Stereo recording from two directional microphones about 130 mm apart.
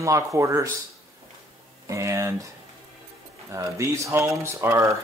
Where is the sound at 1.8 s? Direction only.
25° right (ahead or behind).